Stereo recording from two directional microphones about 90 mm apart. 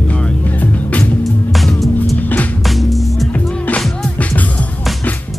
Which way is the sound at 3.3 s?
15° left (ahead or behind).